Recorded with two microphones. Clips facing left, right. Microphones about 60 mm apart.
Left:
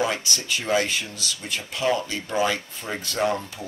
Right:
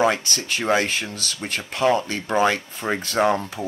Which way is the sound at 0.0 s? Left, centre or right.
Right.